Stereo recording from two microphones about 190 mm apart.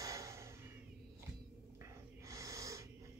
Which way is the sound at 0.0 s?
15° right (ahead or behind).